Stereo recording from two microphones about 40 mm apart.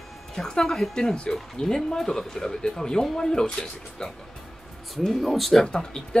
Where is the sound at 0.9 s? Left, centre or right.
Left.